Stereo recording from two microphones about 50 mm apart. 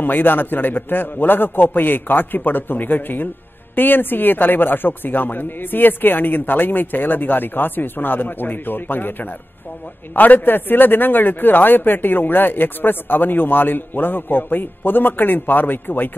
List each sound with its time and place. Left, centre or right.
0.0 s a man's voice: left